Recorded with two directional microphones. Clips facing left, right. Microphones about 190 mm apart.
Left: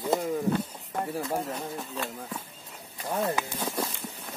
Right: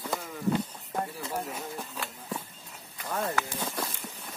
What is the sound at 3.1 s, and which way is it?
Speech, 15° left (ahead or behind).